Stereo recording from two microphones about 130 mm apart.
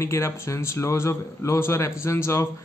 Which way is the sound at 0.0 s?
20° left (ahead or behind).